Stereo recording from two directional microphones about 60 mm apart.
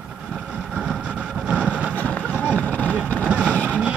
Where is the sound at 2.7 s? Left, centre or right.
Left.